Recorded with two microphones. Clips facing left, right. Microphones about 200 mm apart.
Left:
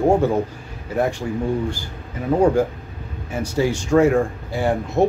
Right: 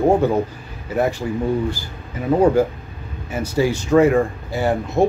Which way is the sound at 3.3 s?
5° right (ahead or behind).